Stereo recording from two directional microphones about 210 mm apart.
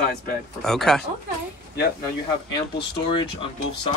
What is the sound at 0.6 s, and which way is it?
Speech, centre (ahead or behind).